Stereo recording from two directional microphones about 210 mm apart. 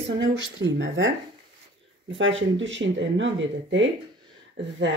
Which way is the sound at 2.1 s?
60° right (ahead or behind).